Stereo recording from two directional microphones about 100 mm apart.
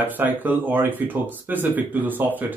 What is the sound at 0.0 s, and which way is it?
Speech, 20° right (ahead or behind).